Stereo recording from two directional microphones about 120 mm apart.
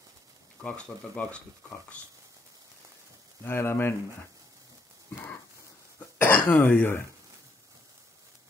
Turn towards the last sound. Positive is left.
turn(degrees=20)  # may be behind; listen again after turning